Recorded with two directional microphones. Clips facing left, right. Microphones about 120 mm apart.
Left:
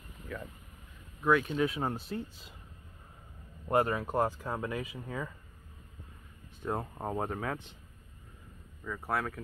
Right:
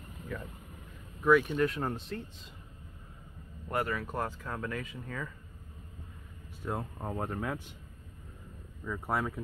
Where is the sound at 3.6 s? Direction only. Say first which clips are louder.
Left 5 dB; 20° left (ahead or behind).